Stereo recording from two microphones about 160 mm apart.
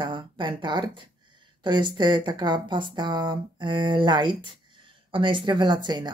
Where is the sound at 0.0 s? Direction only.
30° right (ahead or behind).